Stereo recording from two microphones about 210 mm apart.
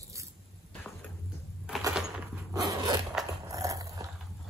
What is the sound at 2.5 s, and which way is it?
Zipper, 15° right (ahead or behind).